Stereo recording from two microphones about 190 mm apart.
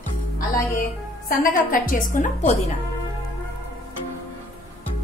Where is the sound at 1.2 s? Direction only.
45° left (ahead or behind).